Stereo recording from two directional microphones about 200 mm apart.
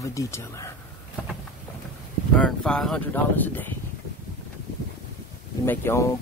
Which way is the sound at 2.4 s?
5° left (ahead or behind).